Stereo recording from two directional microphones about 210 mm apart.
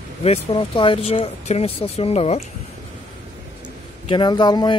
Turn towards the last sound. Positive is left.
turn(degrees=20)  # may be behind; listen again after turning